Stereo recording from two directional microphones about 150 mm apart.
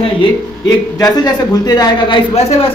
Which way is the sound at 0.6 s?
25° left (ahead or behind).